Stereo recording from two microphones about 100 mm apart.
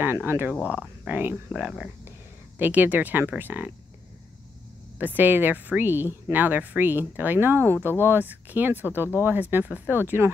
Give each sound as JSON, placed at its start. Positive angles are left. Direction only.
{"t": 0.0, "sound": "speech", "side_deg": -20}
{"t": 4.9, "sound": "speech", "side_deg": -20}